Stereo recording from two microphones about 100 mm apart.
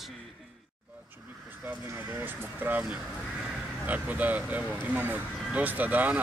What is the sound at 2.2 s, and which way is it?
Speech, 20° right (ahead or behind).